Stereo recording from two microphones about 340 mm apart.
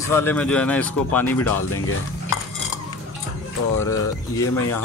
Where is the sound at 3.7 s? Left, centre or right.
Centre.